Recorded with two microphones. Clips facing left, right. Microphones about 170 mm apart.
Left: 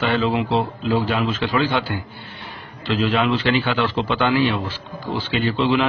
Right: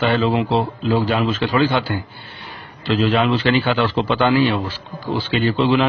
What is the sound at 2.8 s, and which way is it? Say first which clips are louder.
A man's voice: right 2 dB; 35° right (ahead or behind).